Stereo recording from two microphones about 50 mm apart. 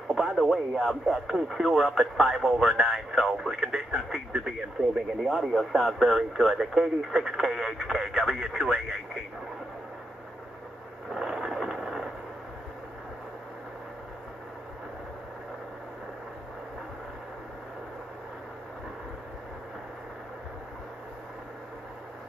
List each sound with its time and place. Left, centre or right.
0.1 s speech: centre
5.4 s speech: centre
11.1 s a sound: centre